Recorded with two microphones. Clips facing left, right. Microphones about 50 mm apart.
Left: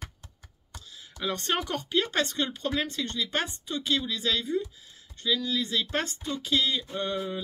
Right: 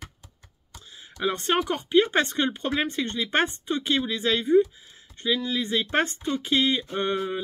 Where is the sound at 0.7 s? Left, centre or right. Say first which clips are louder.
Right 5 dB; centre.